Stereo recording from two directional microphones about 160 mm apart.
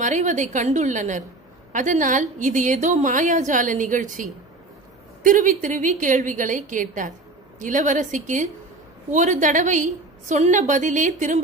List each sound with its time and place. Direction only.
0.0 s a woman's voice: 50° right (ahead or behind)